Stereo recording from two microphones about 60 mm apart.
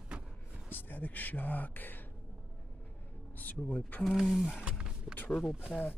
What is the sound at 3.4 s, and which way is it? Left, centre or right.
Speech, left.